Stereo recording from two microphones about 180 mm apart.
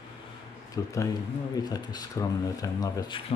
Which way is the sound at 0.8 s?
20° left (ahead or behind).